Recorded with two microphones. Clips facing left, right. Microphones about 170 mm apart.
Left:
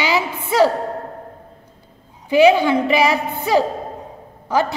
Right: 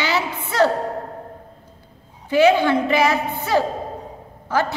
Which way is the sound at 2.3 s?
15° left (ahead or behind).